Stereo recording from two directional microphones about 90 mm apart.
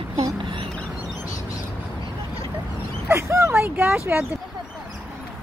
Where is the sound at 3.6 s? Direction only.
30° right (ahead or behind).